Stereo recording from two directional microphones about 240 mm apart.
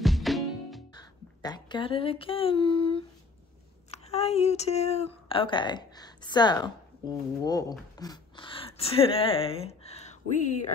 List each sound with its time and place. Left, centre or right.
0.0 s music: centre
0.9 s speech: centre
8.0 s a sound: centre